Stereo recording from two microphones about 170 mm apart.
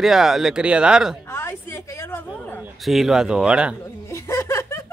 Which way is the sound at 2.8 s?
Centre (ahead or behind).